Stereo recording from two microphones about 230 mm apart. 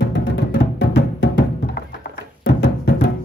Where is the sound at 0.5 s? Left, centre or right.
Left.